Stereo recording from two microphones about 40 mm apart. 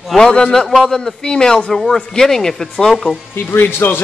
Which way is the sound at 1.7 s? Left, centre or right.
Centre.